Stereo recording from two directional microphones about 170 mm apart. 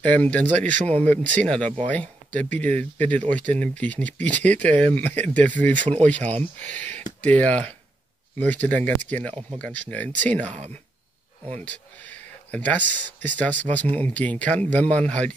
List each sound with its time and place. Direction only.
0.0 s speech: 10° left (ahead or behind)
0.7 s speech: 40° right (ahead or behind)
1.0 s speech: 10° left (ahead or behind)
11.6 s speech: 10° left (ahead or behind)